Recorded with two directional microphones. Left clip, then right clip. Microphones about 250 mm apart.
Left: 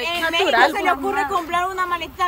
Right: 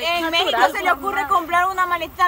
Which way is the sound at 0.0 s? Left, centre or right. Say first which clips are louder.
Right 1 dB; centre.